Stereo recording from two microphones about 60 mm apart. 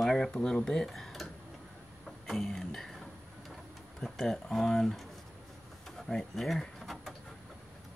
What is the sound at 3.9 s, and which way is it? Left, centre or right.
Speech, centre.